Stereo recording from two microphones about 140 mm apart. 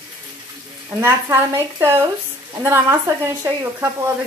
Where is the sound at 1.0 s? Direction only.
20° right (ahead or behind).